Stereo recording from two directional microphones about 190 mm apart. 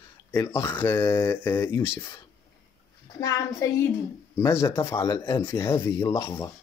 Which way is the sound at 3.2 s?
15° left (ahead or behind).